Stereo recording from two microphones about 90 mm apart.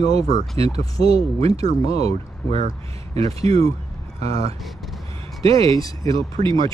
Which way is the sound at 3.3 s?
90° right.